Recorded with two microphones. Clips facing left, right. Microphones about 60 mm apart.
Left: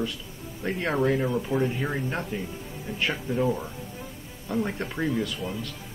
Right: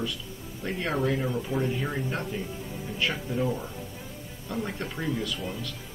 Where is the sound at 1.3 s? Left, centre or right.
Centre.